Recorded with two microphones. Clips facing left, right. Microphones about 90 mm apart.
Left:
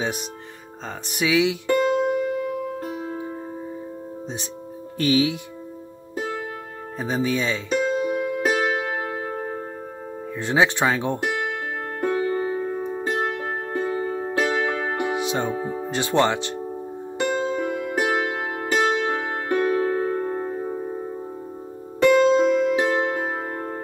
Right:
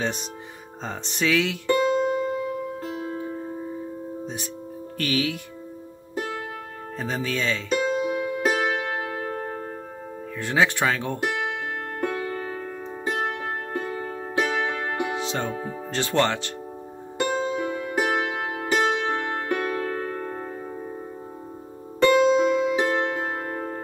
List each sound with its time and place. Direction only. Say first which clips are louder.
1.0 s speech: left 3 dB; 10° left (ahead or behind)
1.8 s music: left 1 dB; 5° left (ahead or behind)
4.9 s speech: left 6 dB; 20° left (ahead or behind)
7.0 s speech: left 4 dB; 15° left (ahead or behind)
7.8 s music: left 2 dB; centre (ahead or behind)
10.4 s speech: left 2 dB; 20° left (ahead or behind)
12.3 s music: left 7 dB; 20° left (ahead or behind)
13.7 s music: left 5 dB; 30° left (ahead or behind)
15.0 s speech: left 3 dB; 15° left (ahead or behind)
17.2 s music: left 1 dB; 5° right (ahead or behind)
19.5 s music: left 8 dB; 20° left (ahead or behind)
22.0 s music: left 2 dB; 5° right (ahead or behind)